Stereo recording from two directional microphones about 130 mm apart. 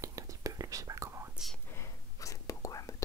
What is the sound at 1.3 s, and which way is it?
Whispering, centre (ahead or behind).